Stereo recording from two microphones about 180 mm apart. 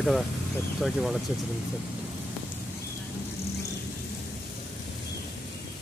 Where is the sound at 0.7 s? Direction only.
Centre (ahead or behind).